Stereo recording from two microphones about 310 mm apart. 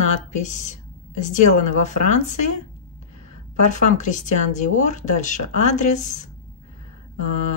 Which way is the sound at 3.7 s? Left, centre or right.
Left.